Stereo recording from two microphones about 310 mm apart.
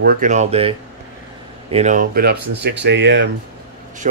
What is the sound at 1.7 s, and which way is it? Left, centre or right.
Speech, right.